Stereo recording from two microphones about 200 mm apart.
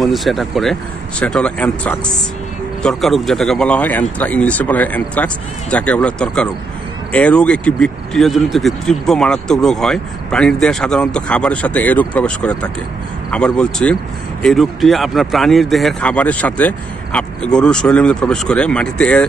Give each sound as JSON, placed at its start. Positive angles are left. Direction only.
{"t": 0.0, "sound": "speech", "side_deg": 0}